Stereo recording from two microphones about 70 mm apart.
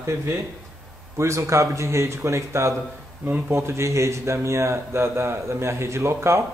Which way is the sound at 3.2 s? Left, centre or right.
Right.